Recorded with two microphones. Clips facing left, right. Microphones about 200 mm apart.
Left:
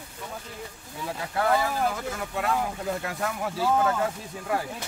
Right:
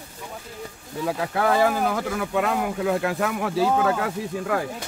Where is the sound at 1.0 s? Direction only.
90° right.